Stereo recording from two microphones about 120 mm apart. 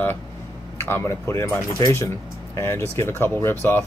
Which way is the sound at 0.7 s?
20° left (ahead or behind).